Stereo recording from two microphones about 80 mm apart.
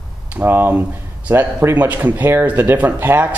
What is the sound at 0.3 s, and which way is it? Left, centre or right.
Speech, right.